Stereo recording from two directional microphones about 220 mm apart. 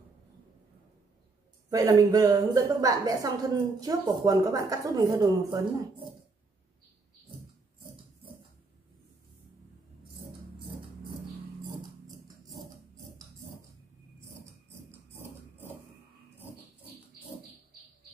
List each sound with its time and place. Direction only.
1.7 s a woman's voice: 15° right (ahead or behind)
14.7 s dog: 10° right (ahead or behind)